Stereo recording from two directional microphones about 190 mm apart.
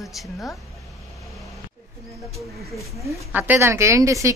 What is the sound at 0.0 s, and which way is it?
Speech, centre (ahead or behind).